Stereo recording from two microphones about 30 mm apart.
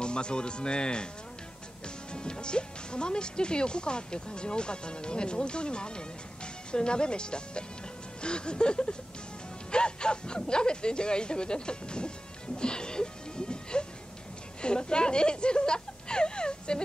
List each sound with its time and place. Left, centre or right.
0.0 s speech: left
2.1 s speech: left